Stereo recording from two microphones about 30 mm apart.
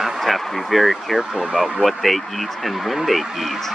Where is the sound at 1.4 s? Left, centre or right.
Centre.